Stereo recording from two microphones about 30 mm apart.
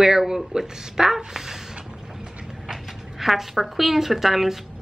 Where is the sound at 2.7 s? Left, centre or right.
Centre.